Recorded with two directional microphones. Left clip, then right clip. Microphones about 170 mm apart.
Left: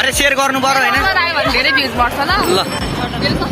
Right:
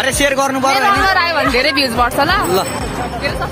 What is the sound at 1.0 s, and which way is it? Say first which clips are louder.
Speech: right 1 dB; 70° right (ahead or behind).